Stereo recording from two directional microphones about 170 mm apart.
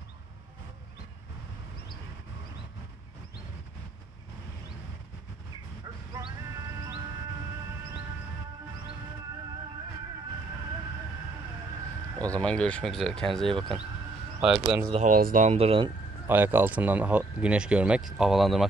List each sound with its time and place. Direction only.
6.1 s music: 20° right (ahead or behind)
12.3 s speech: 5° left (ahead or behind)
14.9 s speech: 40° right (ahead or behind)
15.1 s speech: 50° right (ahead or behind); by 15.9 s 35° right (ahead or behind)
16.3 s speech: 10° right (ahead or behind)